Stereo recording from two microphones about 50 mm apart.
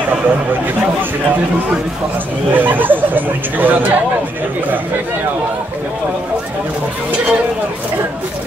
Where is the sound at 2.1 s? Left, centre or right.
Right.